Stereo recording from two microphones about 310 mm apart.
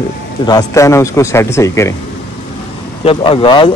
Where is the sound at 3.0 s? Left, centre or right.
Centre.